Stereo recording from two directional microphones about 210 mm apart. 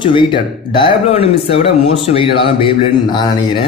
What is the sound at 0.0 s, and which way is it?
A man's voice, 25° left (ahead or behind).